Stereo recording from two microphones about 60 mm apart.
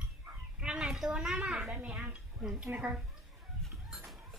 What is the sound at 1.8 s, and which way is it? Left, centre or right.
Speech, right.